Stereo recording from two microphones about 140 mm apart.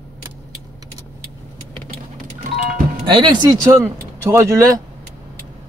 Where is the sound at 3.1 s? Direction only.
35° right (ahead or behind).